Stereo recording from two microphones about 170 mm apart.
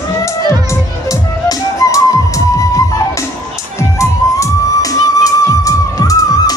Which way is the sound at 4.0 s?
20° left (ahead or behind).